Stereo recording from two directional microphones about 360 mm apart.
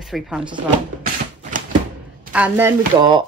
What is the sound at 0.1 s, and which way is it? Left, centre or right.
Speech, centre.